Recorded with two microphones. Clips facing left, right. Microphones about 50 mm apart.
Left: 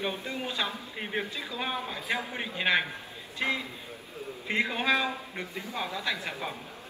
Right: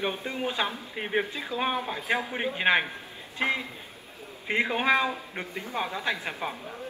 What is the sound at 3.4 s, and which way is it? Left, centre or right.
Speech, right.